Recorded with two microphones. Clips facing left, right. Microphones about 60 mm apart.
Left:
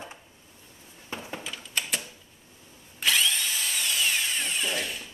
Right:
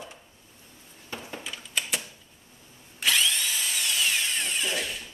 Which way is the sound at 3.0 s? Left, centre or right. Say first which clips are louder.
Even; centre.